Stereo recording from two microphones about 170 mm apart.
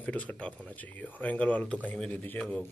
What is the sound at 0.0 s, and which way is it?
Speech, 5° left (ahead or behind).